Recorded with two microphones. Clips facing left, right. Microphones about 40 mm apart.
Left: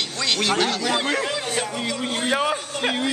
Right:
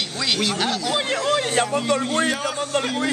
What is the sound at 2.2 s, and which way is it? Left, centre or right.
Speech, left.